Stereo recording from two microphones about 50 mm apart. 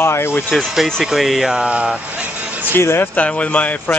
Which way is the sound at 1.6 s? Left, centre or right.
Right.